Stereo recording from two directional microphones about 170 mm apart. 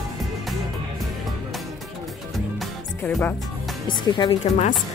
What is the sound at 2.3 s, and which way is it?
Music, centre (ahead or behind).